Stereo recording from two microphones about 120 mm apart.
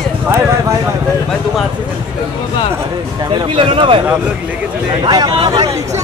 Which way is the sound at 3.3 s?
45° right (ahead or behind).